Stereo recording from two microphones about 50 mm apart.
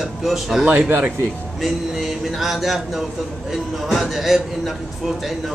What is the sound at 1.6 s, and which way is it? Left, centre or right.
A man's voice, centre.